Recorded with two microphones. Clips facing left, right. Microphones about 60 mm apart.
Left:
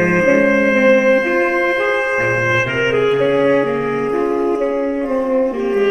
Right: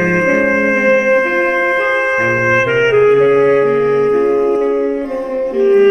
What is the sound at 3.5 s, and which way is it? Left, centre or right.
Music, right.